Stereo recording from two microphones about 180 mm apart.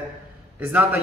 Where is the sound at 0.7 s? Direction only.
10° right (ahead or behind).